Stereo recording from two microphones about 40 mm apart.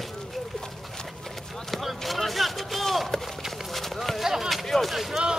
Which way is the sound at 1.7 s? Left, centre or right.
Centre.